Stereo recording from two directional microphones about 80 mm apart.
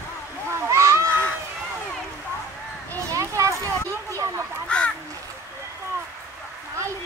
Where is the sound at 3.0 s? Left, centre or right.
Right.